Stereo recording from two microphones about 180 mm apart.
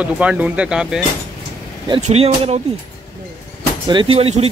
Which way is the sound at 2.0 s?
35° right (ahead or behind).